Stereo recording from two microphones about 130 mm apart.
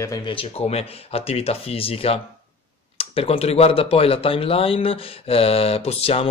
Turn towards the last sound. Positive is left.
turn(degrees=50)  # may be behind; listen again after turning